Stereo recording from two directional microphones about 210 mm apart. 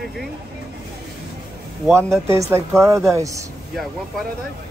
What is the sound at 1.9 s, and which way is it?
A woman's voice, 15° right (ahead or behind).